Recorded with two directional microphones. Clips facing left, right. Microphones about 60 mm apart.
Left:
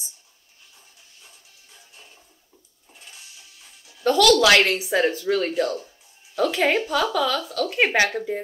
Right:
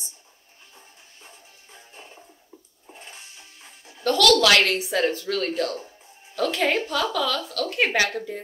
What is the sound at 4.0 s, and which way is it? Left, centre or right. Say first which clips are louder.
Speech: left 2 dB; centre.